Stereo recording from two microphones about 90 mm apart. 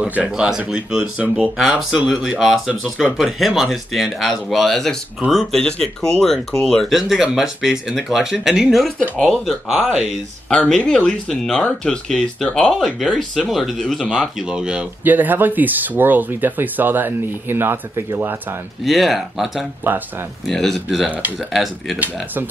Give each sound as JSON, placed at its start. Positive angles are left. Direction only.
{"t": 0.0, "sound": "speech", "side_deg": -10}
{"t": 10.5, "sound": "speech", "side_deg": 15}
{"t": 15.0, "sound": "speech", "side_deg": -20}
{"t": 18.9, "sound": "speech", "side_deg": 0}
{"t": 19.8, "sound": "speech", "side_deg": -20}
{"t": 20.4, "sound": "speech", "side_deg": 5}
{"t": 21.9, "sound": "speech", "side_deg": -20}